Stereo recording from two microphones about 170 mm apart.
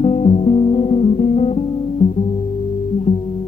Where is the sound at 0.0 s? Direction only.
40° left (ahead or behind).